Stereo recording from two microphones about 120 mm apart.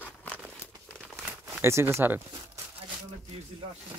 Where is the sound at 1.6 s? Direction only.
20° right (ahead or behind).